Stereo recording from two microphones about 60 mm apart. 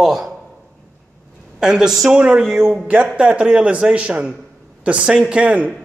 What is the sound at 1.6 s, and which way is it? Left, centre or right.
A man's voice, centre.